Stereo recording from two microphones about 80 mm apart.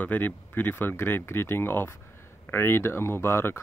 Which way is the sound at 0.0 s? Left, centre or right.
Left.